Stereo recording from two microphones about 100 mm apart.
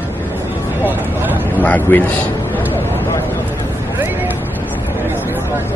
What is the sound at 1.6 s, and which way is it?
Speech, 15° left (ahead or behind).